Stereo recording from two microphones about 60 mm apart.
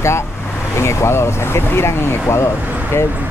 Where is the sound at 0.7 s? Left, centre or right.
Left.